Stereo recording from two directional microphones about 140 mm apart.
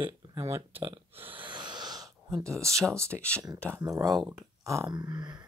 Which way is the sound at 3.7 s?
25° right (ahead or behind).